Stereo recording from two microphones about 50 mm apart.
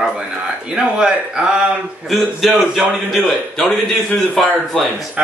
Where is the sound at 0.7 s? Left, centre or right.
Centre.